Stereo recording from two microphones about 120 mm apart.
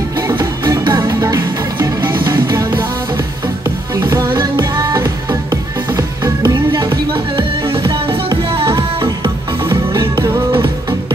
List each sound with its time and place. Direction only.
0.4 s music: 35° right (ahead or behind)
7.7 s music: 50° right (ahead or behind)
8.7 s music: 25° right (ahead or behind)